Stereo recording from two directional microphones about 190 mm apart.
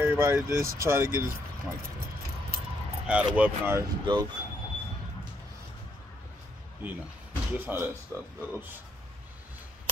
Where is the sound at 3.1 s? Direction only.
5° right (ahead or behind).